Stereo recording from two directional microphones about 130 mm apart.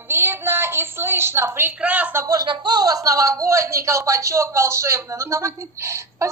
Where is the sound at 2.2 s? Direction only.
35° right (ahead or behind).